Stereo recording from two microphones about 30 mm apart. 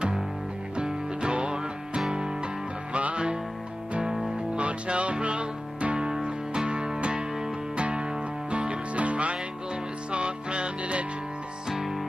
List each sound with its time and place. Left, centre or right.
0.7 s music: right
2.9 s music: right
4.6 s music: right
11.7 s music: centre